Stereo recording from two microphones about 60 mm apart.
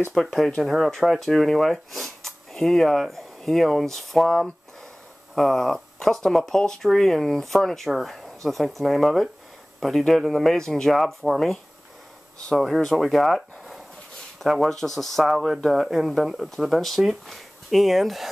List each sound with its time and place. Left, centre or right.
0.1 s speech: centre